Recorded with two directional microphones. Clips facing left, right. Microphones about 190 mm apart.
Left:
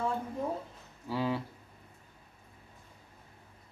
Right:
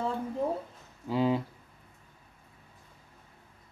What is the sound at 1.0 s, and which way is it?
Speech, 20° right (ahead or behind).